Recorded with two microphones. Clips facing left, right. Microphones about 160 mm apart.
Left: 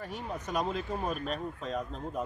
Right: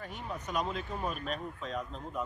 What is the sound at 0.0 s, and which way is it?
Speech, 40° left (ahead or behind).